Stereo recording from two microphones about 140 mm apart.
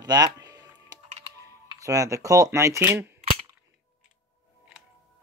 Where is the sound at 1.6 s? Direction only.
25° right (ahead or behind).